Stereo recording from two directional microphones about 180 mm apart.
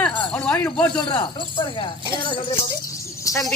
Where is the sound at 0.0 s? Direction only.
5° left (ahead or behind).